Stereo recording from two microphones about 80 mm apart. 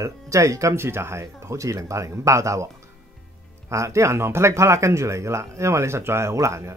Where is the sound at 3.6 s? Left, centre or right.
Right.